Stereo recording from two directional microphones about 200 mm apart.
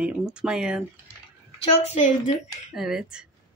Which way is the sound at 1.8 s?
35° left (ahead or behind).